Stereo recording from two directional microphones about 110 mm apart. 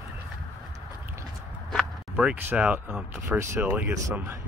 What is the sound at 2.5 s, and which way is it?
Speech, 15° right (ahead or behind).